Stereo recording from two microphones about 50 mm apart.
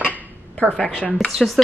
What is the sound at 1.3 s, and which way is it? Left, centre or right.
Speech, centre.